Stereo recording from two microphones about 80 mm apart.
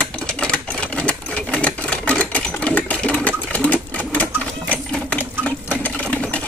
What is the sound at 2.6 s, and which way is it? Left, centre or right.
Sewing machine, centre.